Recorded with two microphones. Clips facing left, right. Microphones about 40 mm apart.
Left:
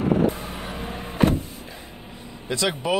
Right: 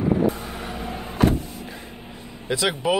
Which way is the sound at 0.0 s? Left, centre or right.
Left.